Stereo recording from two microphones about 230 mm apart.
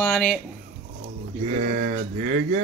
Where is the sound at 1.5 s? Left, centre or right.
Right.